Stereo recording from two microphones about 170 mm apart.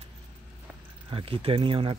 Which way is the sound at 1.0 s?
30° right (ahead or behind).